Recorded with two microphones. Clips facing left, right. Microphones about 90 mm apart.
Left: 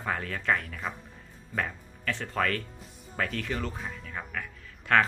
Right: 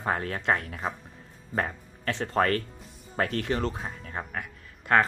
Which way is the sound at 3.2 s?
50° right (ahead or behind).